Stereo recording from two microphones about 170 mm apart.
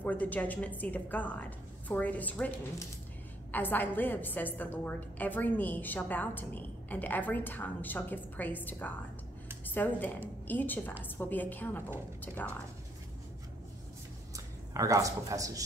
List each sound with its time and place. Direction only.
0.0 s a woman's voice: 10° left (ahead or behind)
3.5 s a woman's voice: 10° left (ahead or behind)
14.3 s speech: 20° right (ahead or behind)